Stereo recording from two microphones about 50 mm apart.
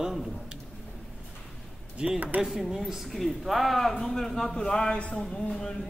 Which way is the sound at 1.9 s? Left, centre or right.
Right.